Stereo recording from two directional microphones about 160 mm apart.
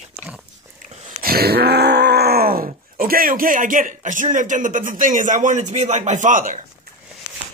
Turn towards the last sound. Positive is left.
turn(degrees=-55)  # may be behind; listen again after turning